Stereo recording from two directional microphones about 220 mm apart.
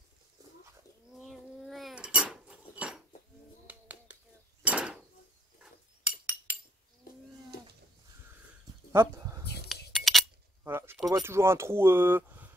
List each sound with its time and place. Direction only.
0.4 s bird: 15° right (ahead or behind)
1.2 s dishes: centre (ahead or behind)
3.6 s finger snapping: 5° right (ahead or behind)
4.6 s a sound: 5° right (ahead or behind)
5.6 s dishes: 5° right (ahead or behind)
8.9 s a sound: 10° right (ahead or behind)
9.9 s glass: centre (ahead or behind)
10.6 s a sound: 10° right (ahead or behind)
11.1 s speech: 15° right (ahead or behind)